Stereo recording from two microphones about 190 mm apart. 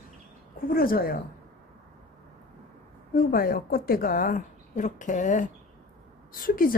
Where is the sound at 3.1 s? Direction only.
50° left (ahead or behind).